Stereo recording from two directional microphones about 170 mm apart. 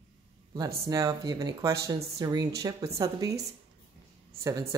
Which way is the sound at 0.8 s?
20° right (ahead or behind).